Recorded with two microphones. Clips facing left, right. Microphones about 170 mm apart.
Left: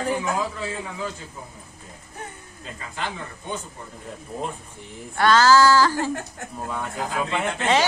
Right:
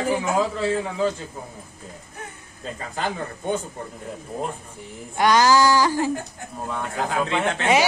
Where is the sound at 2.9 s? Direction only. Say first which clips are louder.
Right 4 dB; 40° right (ahead or behind).